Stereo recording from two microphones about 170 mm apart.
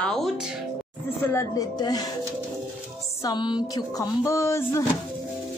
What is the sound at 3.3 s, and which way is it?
Speech, 25° left (ahead or behind).